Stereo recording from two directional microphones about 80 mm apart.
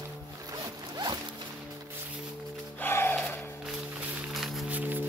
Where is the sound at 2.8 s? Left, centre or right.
Left.